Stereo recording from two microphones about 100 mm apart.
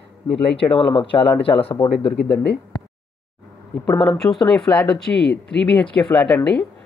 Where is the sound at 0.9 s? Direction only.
60° left (ahead or behind).